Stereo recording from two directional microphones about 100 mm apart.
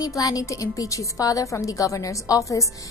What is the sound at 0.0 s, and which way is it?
A woman's voice, 35° left (ahead or behind).